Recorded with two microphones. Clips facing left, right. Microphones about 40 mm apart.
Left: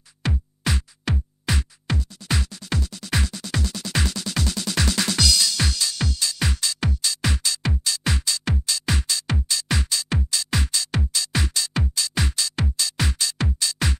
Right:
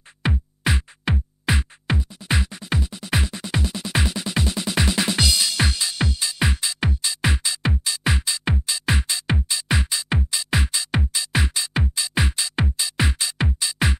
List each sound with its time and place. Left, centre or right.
0.2 s music: right